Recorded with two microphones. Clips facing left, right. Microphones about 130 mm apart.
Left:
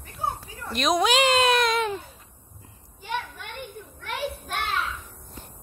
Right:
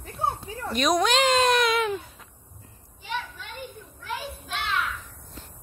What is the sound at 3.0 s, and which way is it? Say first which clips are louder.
Children playing: left 2 dB; 50° left (ahead or behind).